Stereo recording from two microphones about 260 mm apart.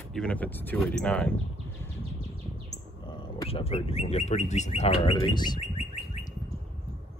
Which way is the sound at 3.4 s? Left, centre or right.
Left.